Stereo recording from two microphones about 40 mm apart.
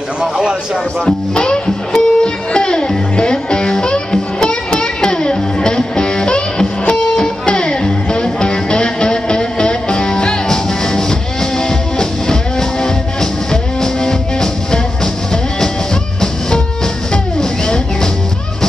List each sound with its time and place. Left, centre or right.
0.2 s a man's voice: centre
1.3 s music: left
16.2 s music: centre